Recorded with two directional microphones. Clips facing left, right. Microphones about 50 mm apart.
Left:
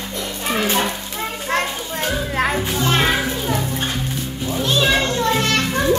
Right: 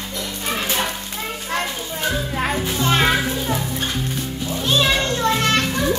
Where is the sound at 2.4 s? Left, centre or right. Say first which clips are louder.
Left 4 dB; left.